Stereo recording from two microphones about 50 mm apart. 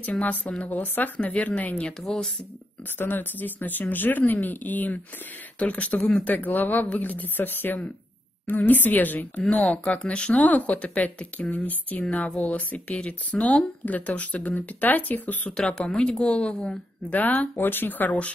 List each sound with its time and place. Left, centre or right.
0.0 s speech: left
1.8 s speech: centre
3.0 s speech: left
15.8 s speech: left
17.1 s speech: left